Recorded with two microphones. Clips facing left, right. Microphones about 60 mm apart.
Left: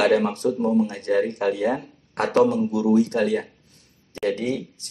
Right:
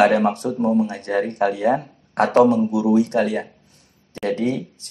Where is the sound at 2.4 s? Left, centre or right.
Right.